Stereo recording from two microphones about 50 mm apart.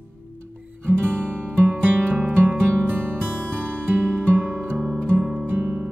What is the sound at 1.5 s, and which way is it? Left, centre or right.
Music, right.